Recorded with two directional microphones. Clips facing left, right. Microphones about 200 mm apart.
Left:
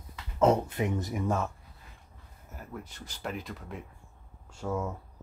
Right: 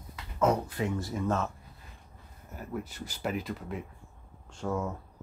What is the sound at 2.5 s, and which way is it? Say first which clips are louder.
Speech: right 5 dB; 5° right (ahead or behind).